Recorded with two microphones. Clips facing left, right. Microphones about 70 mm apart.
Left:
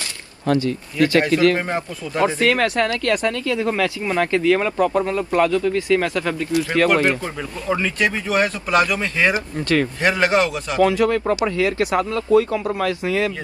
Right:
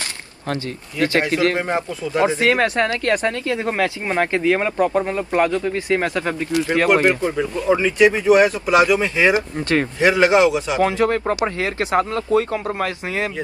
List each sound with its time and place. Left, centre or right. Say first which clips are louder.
0.5 s speech: left 6 dB; right; by 10.8 s centre
10.8 s speech: left 3 dB; right